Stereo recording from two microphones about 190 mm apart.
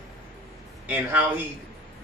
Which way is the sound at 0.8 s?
10° right (ahead or behind).